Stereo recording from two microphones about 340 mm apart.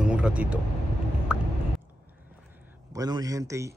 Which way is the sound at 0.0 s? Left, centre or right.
Centre.